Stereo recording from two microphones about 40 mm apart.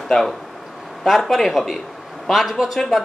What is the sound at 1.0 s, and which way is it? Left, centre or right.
Speech, centre.